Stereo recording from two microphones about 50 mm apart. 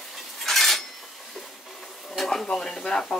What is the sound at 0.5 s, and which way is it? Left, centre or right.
Cutlery, centre.